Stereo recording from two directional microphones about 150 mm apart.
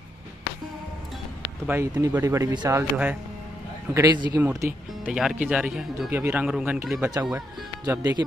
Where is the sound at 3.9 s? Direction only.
25° right (ahead or behind).